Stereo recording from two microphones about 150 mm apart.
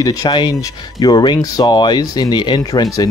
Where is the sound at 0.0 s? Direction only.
25° left (ahead or behind).